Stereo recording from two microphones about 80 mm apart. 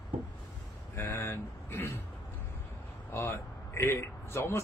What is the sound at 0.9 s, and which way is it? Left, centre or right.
A man's voice, left.